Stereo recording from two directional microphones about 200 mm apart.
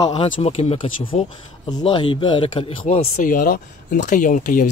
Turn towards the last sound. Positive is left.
turn(degrees=40)  # may be behind; listen again after turning